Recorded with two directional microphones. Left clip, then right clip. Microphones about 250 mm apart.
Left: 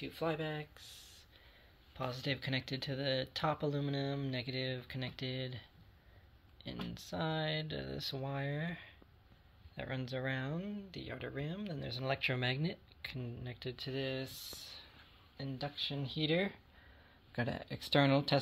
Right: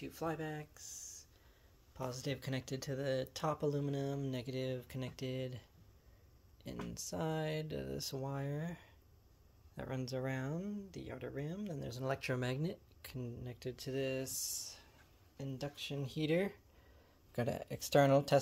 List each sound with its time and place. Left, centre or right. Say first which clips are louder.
0.0 s speech: left 3 dB; centre
2.0 s speech: left 3 dB; centre